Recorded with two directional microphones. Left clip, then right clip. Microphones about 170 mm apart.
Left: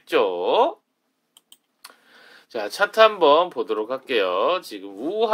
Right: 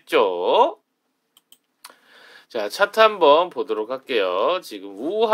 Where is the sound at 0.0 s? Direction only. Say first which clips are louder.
Right 2 dB; 20° right (ahead or behind).